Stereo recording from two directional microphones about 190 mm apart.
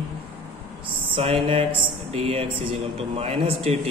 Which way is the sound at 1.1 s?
30° right (ahead or behind).